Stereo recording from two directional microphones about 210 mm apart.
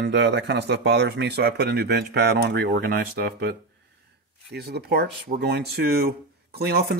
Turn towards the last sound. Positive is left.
turn(degrees=-50)  # may be behind; listen again after turning